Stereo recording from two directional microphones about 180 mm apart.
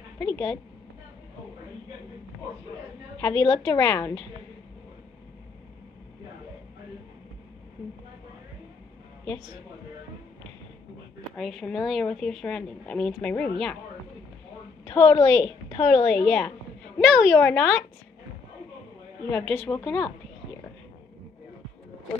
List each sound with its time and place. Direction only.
0.2 s speech: 10° left (ahead or behind)
3.2 s a woman's voice: 20° left (ahead or behind)
11.3 s speech: centre (ahead or behind)
14.9 s a woman's voice: 15° left (ahead or behind)
15.8 s speech: 5° left (ahead or behind)
19.3 s speech: 10° left (ahead or behind)